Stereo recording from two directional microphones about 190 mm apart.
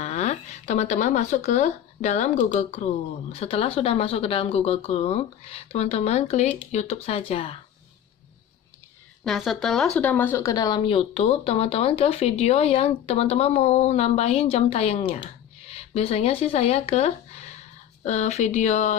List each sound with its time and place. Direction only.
0.0 s speech: 35° left (ahead or behind)
9.2 s speech: centre (ahead or behind); by 18.9 s 40° left (ahead or behind)